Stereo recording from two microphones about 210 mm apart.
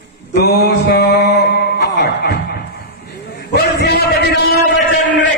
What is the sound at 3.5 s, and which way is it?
Music, 50° left (ahead or behind).